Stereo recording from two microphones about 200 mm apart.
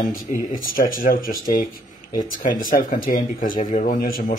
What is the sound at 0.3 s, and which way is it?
A man's voice, 35° left (ahead or behind).